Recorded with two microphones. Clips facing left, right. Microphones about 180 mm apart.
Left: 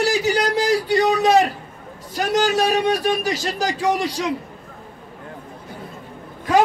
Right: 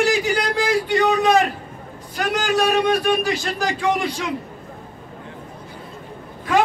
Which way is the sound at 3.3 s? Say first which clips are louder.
Even; 40° left (ahead or behind).